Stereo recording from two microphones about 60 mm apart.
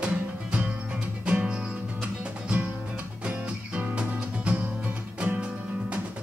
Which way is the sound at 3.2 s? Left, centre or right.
Right.